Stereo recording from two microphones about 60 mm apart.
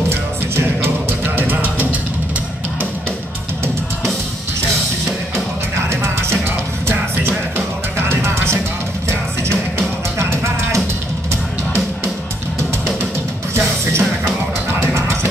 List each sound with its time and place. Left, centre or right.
0.1 s music: right
5.9 s music: right
13.6 s music: right
14.8 s a sound: right